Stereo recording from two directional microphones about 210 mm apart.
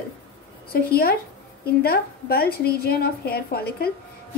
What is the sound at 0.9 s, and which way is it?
A woman's voice, 45° left (ahead or behind).